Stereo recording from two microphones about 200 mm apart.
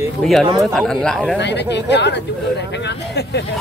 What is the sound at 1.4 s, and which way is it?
Speech, 60° left (ahead or behind).